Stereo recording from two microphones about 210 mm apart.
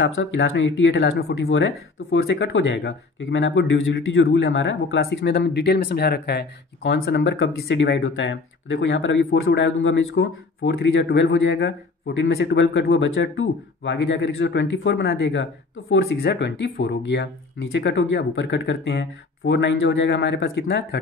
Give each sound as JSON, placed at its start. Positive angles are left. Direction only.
{"t": 0.0, "sound": "speech", "side_deg": 60}
{"t": 12.9, "sound": "speech", "side_deg": 65}